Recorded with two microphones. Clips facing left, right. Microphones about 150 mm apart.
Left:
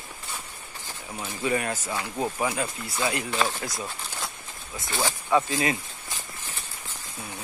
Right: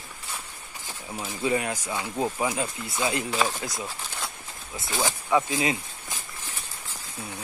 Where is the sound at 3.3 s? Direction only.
5° right (ahead or behind).